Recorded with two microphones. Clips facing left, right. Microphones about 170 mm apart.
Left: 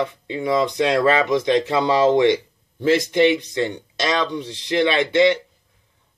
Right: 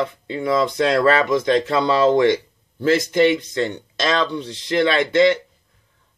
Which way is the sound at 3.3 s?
15° left (ahead or behind).